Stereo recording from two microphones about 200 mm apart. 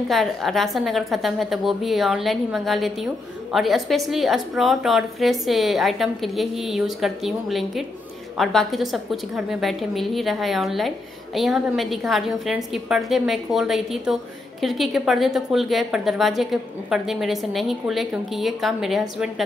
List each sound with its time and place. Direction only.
0.1 s a woman's voice: centre (ahead or behind)